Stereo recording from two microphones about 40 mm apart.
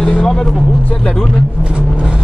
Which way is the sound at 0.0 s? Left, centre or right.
Centre.